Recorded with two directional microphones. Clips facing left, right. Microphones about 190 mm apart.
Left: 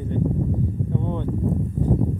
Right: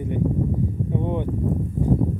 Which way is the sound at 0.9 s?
15° right (ahead or behind).